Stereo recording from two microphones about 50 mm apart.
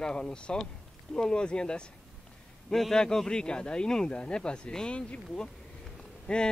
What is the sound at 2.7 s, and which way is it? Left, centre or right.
A man's voice, centre.